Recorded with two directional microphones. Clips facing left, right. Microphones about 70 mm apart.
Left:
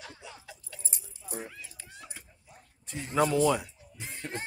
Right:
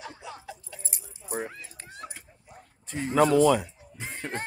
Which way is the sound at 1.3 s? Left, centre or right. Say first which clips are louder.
Right 7 dB; right.